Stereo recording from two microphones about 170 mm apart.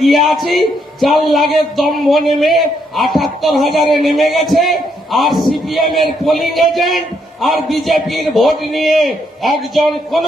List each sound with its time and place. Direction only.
0.0 s a man's voice: centre (ahead or behind)